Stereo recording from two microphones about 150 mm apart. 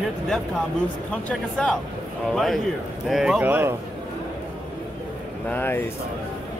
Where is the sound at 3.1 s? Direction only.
5° right (ahead or behind).